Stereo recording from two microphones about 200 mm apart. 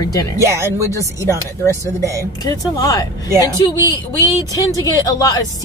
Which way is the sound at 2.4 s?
20° left (ahead or behind).